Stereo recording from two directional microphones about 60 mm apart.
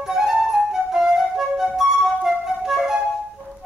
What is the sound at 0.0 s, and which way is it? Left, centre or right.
Flute, centre.